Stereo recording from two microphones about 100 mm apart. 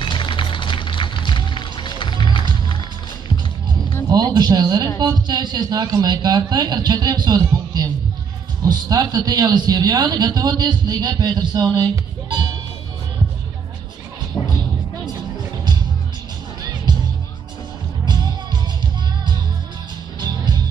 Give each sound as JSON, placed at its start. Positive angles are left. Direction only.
{"t": 0.0, "sound": "music", "side_deg": 55}
{"t": 4.1, "sound": "a man's voice", "side_deg": -45}
{"t": 11.9, "sound": "music", "side_deg": -45}
{"t": 14.3, "sound": "music", "side_deg": 50}
{"t": 18.0, "sound": "music", "side_deg": -45}
{"t": 20.2, "sound": "music", "side_deg": -45}